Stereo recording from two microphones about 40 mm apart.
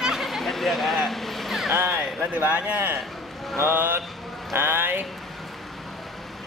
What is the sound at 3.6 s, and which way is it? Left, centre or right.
Speech, right.